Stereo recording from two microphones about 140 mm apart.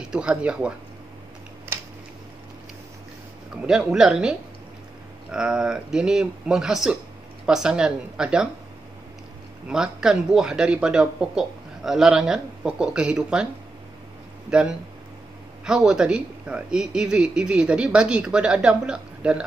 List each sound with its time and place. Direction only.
0.0 s speech: 5° right (ahead or behind)
1.7 s a sound: 15° right (ahead or behind)
3.6 s speech: 5° right (ahead or behind)
9.7 s speech: 5° right (ahead or behind)
14.5 s speech: 5° right (ahead or behind)